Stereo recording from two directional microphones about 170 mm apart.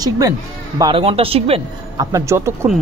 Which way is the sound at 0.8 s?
35° right (ahead or behind).